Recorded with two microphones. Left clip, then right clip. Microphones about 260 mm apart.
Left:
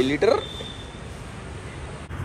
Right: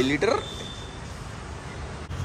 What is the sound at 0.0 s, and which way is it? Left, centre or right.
Speech, centre.